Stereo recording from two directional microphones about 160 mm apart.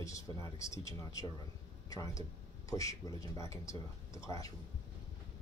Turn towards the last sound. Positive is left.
turn(degrees=20)  # may be behind; listen again after turning